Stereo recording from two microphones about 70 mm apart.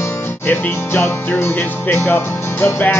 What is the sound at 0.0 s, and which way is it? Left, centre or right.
Music, left.